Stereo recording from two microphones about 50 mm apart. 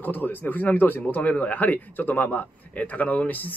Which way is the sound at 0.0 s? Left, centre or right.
Left.